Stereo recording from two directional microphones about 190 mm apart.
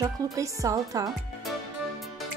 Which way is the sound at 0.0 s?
15° right (ahead or behind).